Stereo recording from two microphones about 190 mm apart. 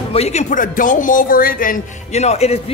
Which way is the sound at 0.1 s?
35° left (ahead or behind).